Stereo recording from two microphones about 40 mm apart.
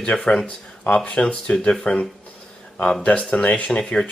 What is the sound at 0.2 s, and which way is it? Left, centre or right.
Speech, centre.